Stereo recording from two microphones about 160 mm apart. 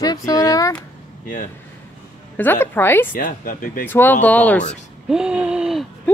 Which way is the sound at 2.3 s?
10° left (ahead or behind).